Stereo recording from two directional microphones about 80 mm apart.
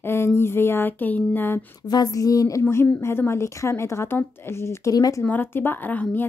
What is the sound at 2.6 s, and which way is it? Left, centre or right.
A woman's voice, left.